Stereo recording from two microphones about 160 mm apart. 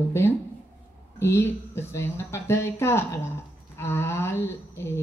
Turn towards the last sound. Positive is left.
turn(degrees=15)  # may be behind; listen again after turning